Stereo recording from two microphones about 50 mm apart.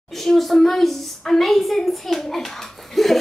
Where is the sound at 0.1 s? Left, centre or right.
Centre.